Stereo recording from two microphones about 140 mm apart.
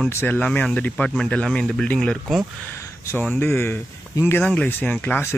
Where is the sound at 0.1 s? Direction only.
20° left (ahead or behind).